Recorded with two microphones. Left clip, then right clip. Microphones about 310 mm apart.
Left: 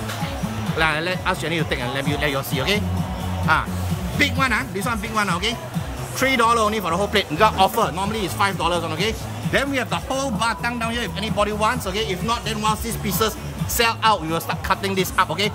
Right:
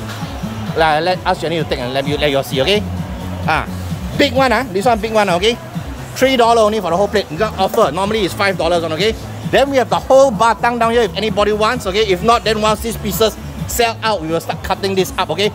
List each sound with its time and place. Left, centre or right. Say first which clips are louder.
0.7 s speech: right 8 dB; centre
4.2 s speech: right 7 dB; centre